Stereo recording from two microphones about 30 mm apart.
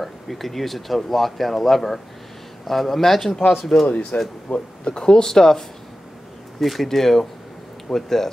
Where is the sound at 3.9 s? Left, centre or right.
Left.